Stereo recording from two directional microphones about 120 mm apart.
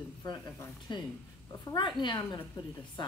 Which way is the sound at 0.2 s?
35° left (ahead or behind).